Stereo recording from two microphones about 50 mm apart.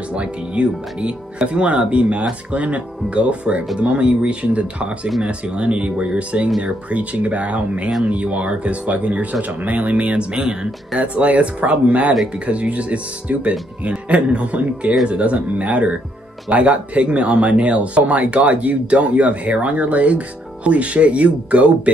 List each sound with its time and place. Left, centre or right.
0.1 s speech: right